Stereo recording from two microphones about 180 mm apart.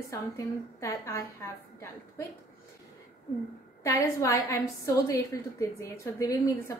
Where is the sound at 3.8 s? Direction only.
15° left (ahead or behind).